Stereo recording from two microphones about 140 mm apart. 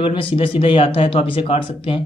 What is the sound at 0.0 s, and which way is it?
Speech, 40° left (ahead or behind).